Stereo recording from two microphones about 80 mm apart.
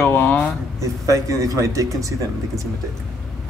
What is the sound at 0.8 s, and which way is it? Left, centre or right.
A man's voice, right.